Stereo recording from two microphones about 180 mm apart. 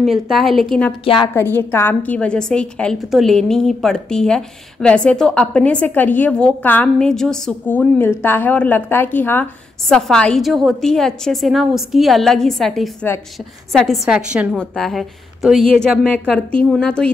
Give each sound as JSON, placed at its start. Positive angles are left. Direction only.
{"t": 0.0, "sound": "a woman's voice", "side_deg": 0}
{"t": 1.0, "sound": "a woman's voice", "side_deg": 30}
{"t": 1.3, "sound": "a woman's voice", "side_deg": 10}